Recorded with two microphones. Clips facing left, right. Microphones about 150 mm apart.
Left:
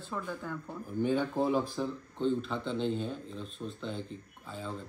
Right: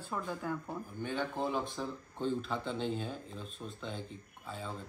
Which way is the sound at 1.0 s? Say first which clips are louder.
Left 6 dB; 10° left (ahead or behind).